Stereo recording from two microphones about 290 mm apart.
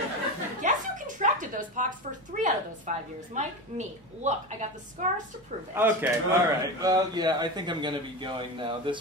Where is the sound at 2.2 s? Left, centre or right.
Right.